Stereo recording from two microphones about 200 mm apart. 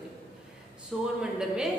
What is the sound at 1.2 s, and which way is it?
Speech, centre (ahead or behind).